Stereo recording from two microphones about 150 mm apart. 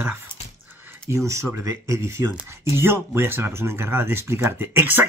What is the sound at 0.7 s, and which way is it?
Speech, 10° right (ahead or behind).